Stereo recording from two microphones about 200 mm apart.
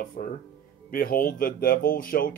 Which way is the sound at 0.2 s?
45° left (ahead or behind).